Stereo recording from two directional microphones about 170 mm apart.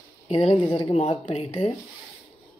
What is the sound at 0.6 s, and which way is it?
A woman's voice, 30° left (ahead or behind).